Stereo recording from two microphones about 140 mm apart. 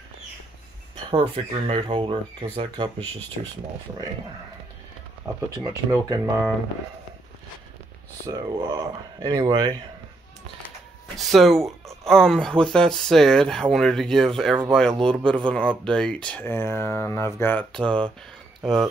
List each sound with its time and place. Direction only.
1.1 s speech: 45° right (ahead or behind)
5.2 s speech: 15° right (ahead or behind)
8.3 s speech: 30° right (ahead or behind)
11.1 s speech: centre (ahead or behind)